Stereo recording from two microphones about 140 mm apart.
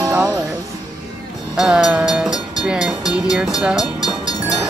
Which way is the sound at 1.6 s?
5° right (ahead or behind).